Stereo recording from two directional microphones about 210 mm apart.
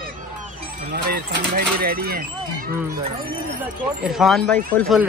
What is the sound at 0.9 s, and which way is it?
Speech, 50° right (ahead or behind).